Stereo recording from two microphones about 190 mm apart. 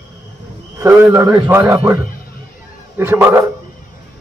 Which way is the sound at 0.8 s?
15° right (ahead or behind).